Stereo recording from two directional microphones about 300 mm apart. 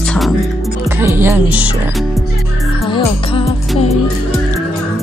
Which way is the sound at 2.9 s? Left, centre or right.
Centre.